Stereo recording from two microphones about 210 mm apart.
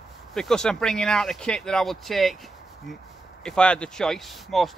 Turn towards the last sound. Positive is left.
turn(degrees=0)  # may be behind; listen again after turning